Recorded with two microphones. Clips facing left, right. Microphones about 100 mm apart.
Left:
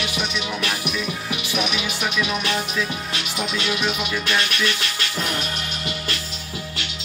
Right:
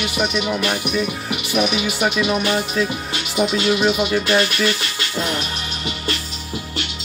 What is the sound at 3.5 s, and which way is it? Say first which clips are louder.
Music: right 6 dB; 35° right (ahead or behind).